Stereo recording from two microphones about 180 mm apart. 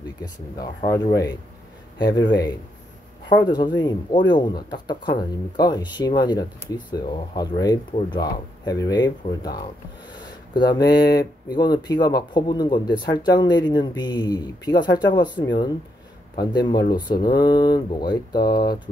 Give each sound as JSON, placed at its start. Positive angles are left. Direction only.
{"t": 0.8, "sound": "speech", "side_deg": 20}